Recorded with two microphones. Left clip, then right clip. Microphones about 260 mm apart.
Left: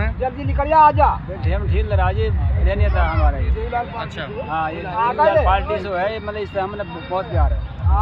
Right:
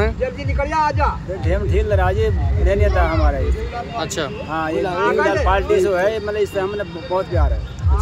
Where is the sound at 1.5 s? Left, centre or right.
Centre.